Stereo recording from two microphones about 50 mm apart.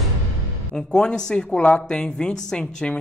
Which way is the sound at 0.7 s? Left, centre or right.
Centre.